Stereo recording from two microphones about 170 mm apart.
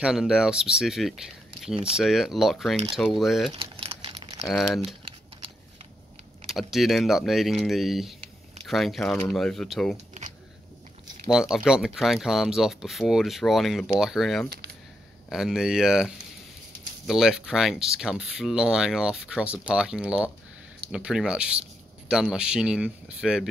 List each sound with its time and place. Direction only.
0.0 s speech: 5° right (ahead or behind)
3.5 s typing: 30° right (ahead or behind)
4.5 s speech: centre (ahead or behind)
6.4 s speech: centre (ahead or behind)
11.2 s speech: 5° right (ahead or behind)